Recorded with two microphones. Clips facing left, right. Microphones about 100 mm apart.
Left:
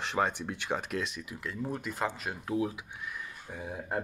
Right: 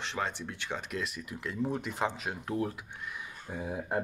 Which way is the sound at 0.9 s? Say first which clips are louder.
Left 1 dB; centre (ahead or behind).